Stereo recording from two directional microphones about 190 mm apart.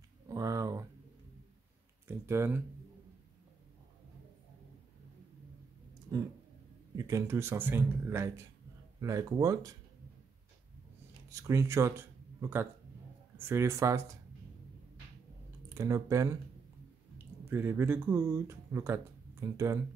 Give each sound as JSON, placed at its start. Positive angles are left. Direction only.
{"t": 0.3, "sound": "a sound", "side_deg": -20}
{"t": 2.0, "sound": "speech", "side_deg": -15}
{"t": 7.0, "sound": "speech", "side_deg": -15}
{"t": 11.2, "sound": "speech", "side_deg": -15}
{"t": 15.7, "sound": "speech", "side_deg": -15}
{"t": 17.5, "sound": "speech", "side_deg": -10}